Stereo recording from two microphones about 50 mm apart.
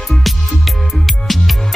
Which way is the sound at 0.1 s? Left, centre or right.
Centre.